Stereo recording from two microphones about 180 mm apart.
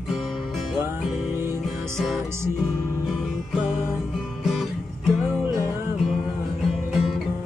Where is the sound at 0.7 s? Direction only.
10° right (ahead or behind).